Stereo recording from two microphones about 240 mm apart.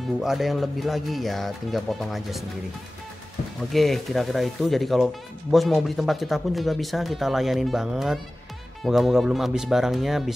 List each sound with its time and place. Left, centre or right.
0.2 s speech: centre
3.7 s speech: centre